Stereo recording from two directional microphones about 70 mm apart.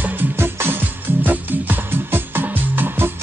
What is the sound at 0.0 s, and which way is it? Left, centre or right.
Music, right.